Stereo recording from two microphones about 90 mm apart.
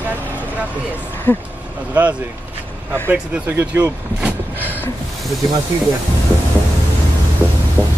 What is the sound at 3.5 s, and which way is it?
Speech, 25° right (ahead or behind).